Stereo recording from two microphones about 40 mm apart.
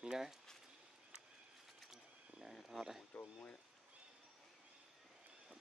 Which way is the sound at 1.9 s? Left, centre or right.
Centre.